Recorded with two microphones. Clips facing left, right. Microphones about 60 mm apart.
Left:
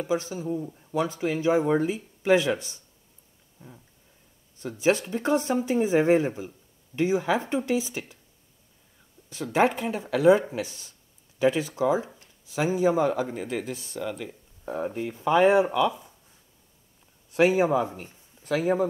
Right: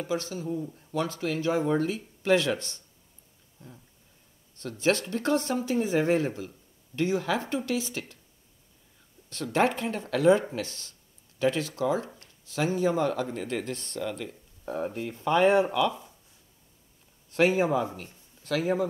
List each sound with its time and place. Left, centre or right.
0.0 s speech: centre
4.6 s speech: centre
9.3 s speech: centre
17.3 s speech: centre